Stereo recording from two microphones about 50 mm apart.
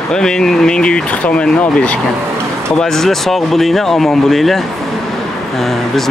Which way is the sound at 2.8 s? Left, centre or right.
Centre.